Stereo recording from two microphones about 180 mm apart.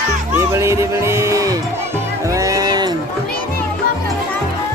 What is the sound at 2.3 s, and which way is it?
Music, 15° right (ahead or behind).